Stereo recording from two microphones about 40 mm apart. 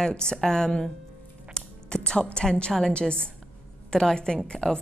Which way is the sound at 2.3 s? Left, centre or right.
Left.